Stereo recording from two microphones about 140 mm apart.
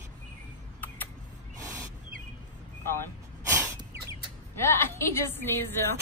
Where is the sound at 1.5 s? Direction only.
20° right (ahead or behind).